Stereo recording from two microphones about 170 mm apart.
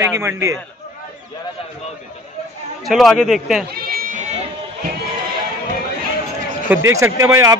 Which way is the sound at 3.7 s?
65° right (ahead or behind).